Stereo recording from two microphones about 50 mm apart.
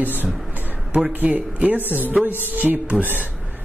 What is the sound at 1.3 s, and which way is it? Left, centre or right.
Music, right.